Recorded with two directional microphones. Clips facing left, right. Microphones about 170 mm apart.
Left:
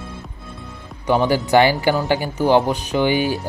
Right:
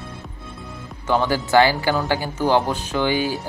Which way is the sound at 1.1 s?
15° left (ahead or behind).